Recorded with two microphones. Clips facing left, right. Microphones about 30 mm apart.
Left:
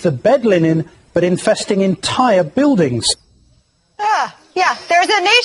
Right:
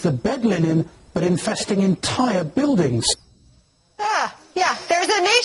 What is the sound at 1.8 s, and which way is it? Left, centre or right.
Speech, left.